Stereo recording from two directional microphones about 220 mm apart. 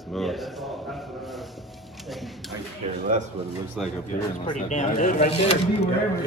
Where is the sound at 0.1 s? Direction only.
Centre (ahead or behind).